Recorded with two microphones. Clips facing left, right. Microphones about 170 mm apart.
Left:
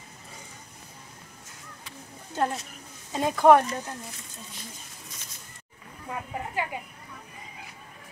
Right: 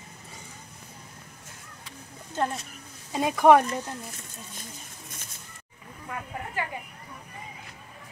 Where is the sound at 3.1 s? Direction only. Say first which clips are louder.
Even; 10° right (ahead or behind).